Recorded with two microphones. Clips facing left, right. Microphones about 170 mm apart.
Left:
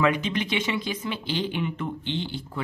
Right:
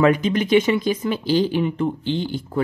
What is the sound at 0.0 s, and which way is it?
Speech, 40° right (ahead or behind).